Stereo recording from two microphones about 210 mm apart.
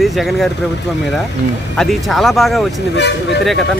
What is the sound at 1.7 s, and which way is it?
Speech, centre (ahead or behind).